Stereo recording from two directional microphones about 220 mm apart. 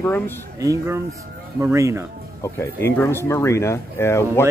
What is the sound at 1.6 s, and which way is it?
Speech, 10° right (ahead or behind).